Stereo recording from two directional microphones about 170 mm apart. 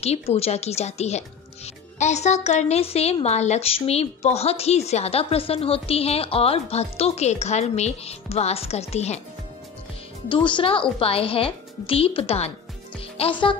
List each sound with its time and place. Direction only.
0.0 s a woman's voice: 40° left (ahead or behind)
10.2 s a woman's voice: 30° left (ahead or behind)